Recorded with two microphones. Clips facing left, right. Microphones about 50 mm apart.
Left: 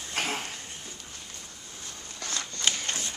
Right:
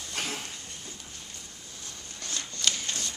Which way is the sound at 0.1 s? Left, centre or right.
Left.